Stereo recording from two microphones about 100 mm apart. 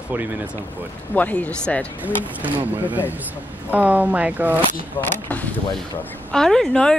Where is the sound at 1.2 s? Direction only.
15° left (ahead or behind).